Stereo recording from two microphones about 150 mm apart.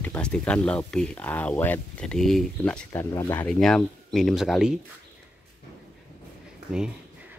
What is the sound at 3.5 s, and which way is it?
Speech, 5° left (ahead or behind).